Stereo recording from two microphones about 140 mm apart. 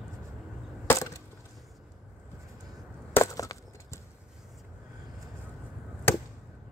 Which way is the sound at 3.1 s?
20° left (ahead or behind).